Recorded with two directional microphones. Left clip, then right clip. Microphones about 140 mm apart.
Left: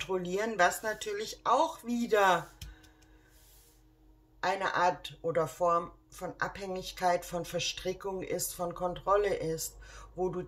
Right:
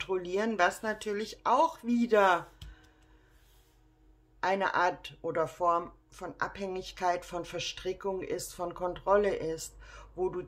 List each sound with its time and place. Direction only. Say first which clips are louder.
0.0 s speech: right 1 dB; 30° right (ahead or behind)
4.4 s speech: right 1 dB; 40° right (ahead or behind)